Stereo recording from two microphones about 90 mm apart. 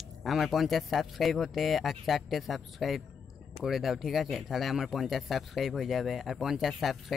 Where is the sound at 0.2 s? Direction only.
Centre (ahead or behind).